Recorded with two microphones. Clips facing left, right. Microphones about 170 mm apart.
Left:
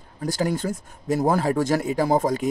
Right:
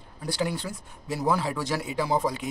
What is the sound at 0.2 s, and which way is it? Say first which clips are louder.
Speech: left 5 dB; 45° left (ahead or behind).